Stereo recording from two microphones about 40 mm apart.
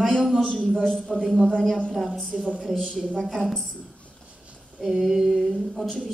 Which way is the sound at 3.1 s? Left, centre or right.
Centre.